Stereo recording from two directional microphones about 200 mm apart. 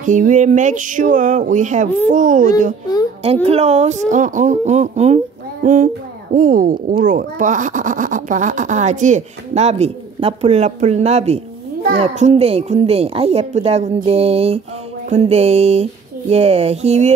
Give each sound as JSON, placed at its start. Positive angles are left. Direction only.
{"t": 0.0, "sound": "speech", "side_deg": -40}